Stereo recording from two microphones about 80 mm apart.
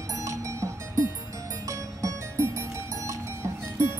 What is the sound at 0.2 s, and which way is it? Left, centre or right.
Music, right.